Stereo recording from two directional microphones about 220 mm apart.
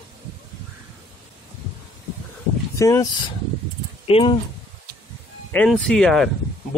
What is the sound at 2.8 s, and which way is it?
Speech, 15° left (ahead or behind).